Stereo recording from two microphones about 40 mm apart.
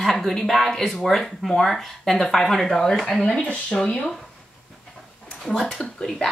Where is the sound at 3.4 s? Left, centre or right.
Left.